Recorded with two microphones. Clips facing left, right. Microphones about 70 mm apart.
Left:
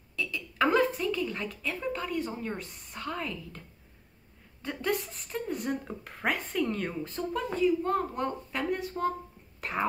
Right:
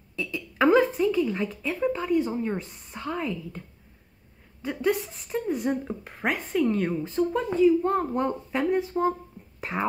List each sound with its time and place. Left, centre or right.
0.1 s a sound: centre
2.3 s a woman's voice: centre
7.8 s a child's voice: right
8.2 s a woman's voice: centre